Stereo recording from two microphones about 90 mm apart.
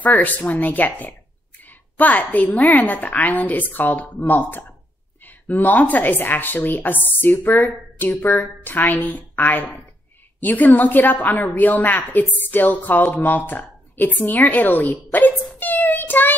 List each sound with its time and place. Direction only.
0.0 s speech: 20° left (ahead or behind)